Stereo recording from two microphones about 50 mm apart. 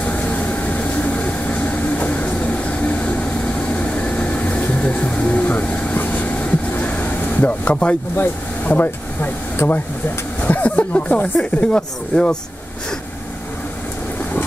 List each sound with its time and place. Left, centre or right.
0.0 s vehicle: left
8.6 s speech: left
10.4 s speech: left